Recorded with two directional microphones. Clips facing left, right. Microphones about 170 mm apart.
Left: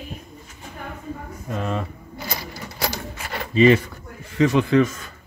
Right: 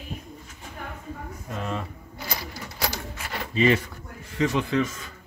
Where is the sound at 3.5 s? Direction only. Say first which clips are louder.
Left 6 dB; 90° left; by 5.0 s 65° left (ahead or behind).